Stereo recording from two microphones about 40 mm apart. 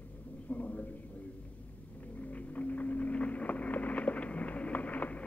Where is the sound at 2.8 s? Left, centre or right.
Left.